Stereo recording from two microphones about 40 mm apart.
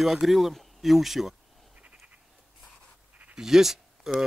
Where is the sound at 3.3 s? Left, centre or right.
Centre.